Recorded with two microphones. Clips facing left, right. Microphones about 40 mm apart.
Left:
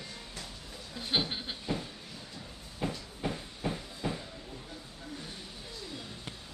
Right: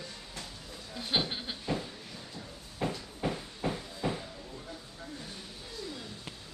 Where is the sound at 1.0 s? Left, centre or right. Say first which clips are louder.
Even; centre.